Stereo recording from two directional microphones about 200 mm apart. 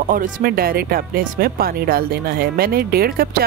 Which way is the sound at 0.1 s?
45° right (ahead or behind).